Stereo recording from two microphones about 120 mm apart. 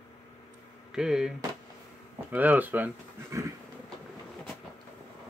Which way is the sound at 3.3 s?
25° right (ahead or behind).